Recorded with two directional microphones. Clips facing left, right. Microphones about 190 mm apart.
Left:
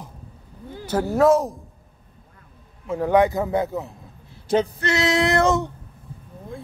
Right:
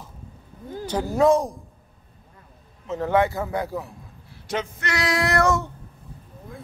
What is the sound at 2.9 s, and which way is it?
A man's voice, 15° left (ahead or behind).